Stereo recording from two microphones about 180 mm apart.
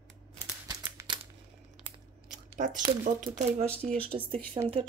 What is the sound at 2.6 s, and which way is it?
Speech, 45° right (ahead or behind).